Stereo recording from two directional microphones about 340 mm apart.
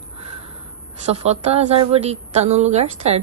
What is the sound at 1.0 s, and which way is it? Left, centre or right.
A woman's voice, centre.